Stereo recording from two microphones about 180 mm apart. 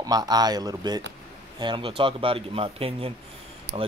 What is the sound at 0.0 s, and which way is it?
Speech, 20° right (ahead or behind).